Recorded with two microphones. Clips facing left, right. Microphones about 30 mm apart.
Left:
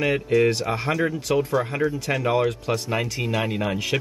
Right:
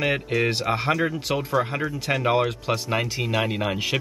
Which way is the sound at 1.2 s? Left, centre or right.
Centre.